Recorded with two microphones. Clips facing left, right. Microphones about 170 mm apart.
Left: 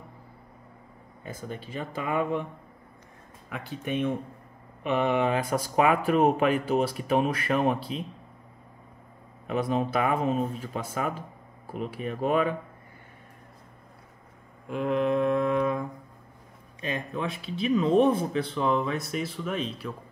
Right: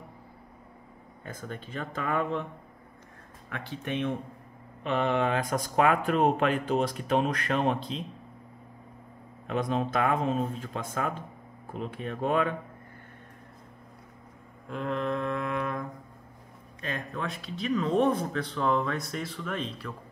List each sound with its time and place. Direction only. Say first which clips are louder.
1.2 s speech: left 2 dB; 5° left (ahead or behind)
3.4 s speech: left 2 dB; 10° left (ahead or behind)
9.5 s speech: left 2 dB; 5° left (ahead or behind)
14.7 s mantra: left 5 dB; 15° left (ahead or behind)
16.8 s speech: left 3 dB; 15° left (ahead or behind)